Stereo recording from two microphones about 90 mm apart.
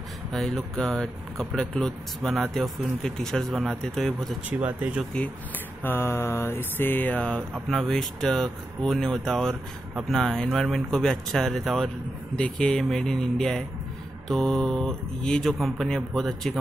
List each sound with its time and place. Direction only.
0.3 s speech: 5° left (ahead or behind)
4.5 s speech: 15° right (ahead or behind)
5.9 s mantra: 25° left (ahead or behind)
7.2 s speech: 10° left (ahead or behind)